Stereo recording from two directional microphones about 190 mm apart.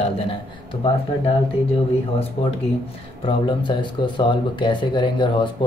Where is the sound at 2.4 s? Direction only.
30° left (ahead or behind).